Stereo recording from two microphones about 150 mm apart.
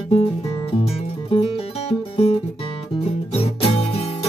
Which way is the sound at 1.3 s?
40° left (ahead or behind).